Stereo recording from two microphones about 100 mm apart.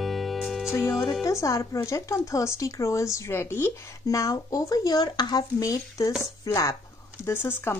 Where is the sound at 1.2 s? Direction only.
30° left (ahead or behind).